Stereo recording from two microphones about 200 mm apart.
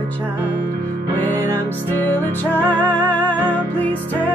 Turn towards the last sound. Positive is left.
turn(degrees=10)  # may be behind; listen again after turning